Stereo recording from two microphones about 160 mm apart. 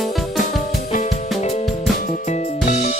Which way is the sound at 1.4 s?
45° left (ahead or behind).